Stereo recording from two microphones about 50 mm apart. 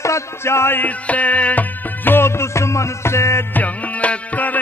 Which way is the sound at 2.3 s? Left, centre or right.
Left.